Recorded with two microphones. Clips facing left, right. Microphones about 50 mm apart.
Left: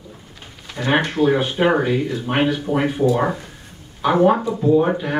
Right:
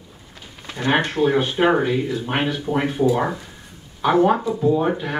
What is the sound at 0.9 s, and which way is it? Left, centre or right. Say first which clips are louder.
Speech: left 1 dB; centre.